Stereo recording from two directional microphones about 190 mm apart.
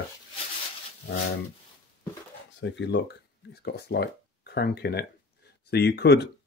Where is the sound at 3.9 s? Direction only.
60° left (ahead or behind).